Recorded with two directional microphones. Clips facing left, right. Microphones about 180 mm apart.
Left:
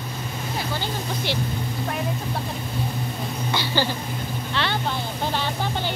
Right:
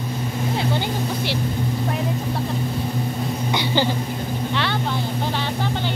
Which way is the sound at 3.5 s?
20° right (ahead or behind).